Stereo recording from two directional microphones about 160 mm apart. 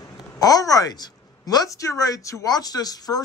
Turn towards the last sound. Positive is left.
turn(degrees=25)  # may be behind; listen again after turning